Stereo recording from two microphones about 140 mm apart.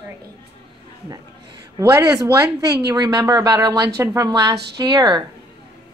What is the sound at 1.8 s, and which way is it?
Speech, 25° right (ahead or behind).